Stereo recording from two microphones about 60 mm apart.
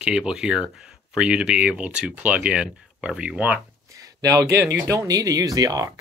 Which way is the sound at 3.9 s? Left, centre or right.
Right.